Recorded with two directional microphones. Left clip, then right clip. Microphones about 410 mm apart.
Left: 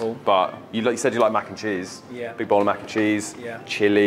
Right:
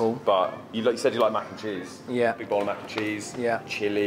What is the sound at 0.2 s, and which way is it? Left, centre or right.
Speech, left.